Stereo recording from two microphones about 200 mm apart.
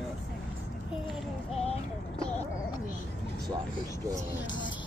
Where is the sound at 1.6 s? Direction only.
30° left (ahead or behind).